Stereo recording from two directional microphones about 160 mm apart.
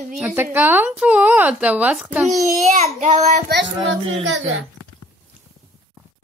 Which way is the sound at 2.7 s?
45° right (ahead or behind).